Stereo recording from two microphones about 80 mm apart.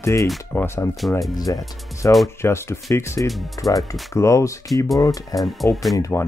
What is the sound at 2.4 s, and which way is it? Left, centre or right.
Speech, left.